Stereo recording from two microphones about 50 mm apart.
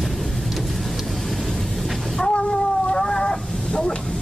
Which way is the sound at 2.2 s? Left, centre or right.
Centre.